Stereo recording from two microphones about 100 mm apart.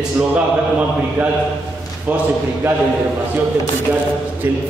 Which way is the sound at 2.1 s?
20° right (ahead or behind).